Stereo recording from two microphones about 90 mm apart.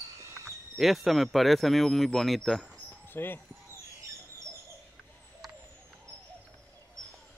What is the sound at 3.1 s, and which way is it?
Speech, 25° left (ahead or behind).